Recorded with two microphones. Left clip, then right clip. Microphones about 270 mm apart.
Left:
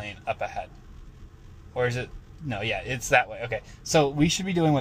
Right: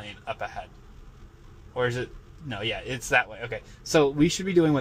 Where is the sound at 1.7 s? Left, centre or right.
Centre.